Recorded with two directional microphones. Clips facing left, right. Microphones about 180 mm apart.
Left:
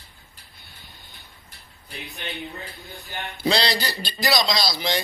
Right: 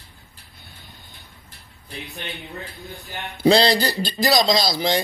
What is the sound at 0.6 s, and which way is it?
Train, 20° right (ahead or behind).